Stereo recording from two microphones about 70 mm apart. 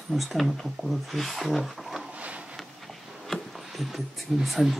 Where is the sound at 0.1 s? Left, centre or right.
Centre.